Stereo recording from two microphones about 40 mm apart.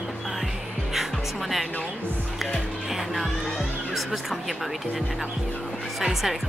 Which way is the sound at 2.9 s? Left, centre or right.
Centre.